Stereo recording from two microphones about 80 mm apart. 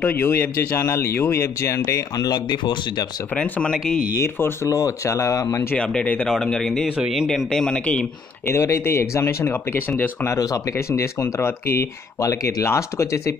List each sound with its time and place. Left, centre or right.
0.0 s speech: left
2.1 s speech: left
3.3 s speech: centre
4.2 s speech: left
4.6 s speech: left
5.8 s speech: centre
7.0 s speech: centre
7.3 s speech: centre
8.5 s speech: left
10.3 s speech: left